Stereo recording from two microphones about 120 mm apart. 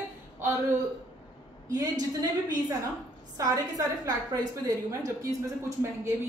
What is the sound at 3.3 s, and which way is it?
A woman's voice, 30° right (ahead or behind).